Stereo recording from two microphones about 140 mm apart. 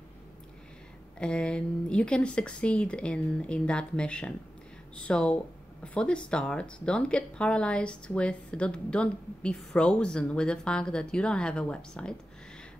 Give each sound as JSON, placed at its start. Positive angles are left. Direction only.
{"t": 1.2, "sound": "a woman's voice", "side_deg": 5}